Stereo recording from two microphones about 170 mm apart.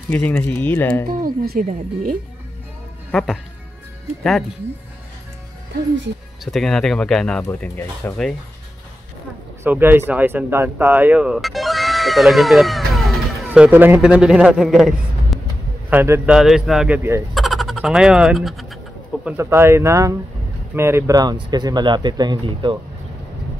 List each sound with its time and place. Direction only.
0.1 s speech: 10° left (ahead or behind)
1.0 s speech: 60° right (ahead or behind)
3.1 s a man's voice: 5° left (ahead or behind)
6.4 s a man's voice: centre (ahead or behind)
9.6 s speech: 10° right (ahead or behind)
13.5 s a man's voice: 10° right (ahead or behind)
15.9 s a man's voice: 10° right (ahead or behind)
17.3 s speech: centre (ahead or behind)
19.2 s speech: 15° right (ahead or behind)